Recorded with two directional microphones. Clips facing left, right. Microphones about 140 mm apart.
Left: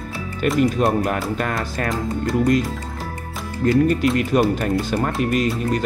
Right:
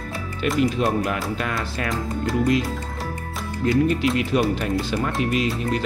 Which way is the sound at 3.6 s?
45° left (ahead or behind).